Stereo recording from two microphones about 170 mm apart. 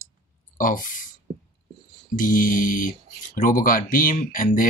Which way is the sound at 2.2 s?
55° left (ahead or behind).